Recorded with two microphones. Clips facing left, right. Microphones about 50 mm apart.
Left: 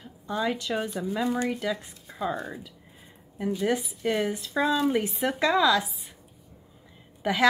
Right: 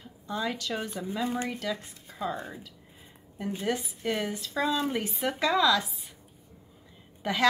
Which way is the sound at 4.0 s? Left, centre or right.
Centre.